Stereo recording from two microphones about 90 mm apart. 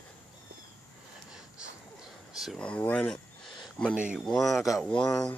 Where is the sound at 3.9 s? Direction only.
15° right (ahead or behind).